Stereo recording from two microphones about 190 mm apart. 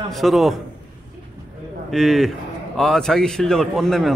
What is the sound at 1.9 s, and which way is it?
A man's voice, centre (ahead or behind).